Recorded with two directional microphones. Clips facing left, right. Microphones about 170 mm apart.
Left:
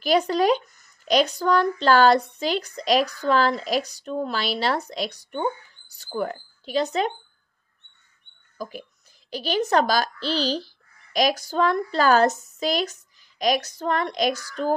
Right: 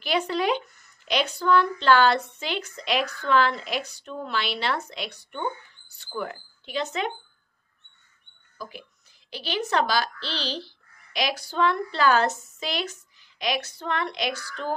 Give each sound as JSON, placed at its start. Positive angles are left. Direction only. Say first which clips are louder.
{"t": 0.0, "sound": "a woman's voice", "louder": "left 5 dB", "side_deg": 40}
{"t": 8.5, "sound": "a child's voice", "louder": "left 5 dB", "side_deg": 45}